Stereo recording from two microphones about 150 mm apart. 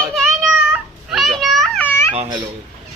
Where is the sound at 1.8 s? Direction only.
15° left (ahead or behind).